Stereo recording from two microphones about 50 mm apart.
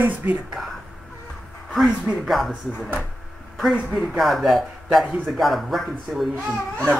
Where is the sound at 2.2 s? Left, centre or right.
Centre.